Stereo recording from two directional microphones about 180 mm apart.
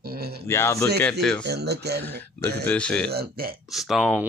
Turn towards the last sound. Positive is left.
turn(degrees=0)  # may be behind; listen again after turning